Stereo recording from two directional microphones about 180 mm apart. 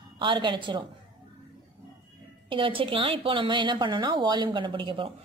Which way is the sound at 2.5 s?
30° right (ahead or behind).